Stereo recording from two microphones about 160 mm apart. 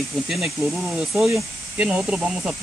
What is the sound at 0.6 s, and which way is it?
Speech, 15° right (ahead or behind).